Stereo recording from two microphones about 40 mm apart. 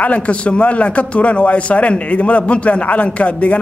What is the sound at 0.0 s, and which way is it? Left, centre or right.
A man's voice, left.